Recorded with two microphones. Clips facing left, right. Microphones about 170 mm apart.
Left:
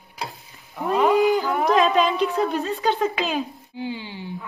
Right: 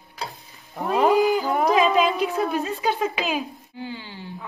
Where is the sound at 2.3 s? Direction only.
Centre (ahead or behind).